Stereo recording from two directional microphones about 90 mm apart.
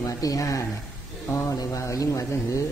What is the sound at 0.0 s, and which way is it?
A man's voice, 40° left (ahead or behind).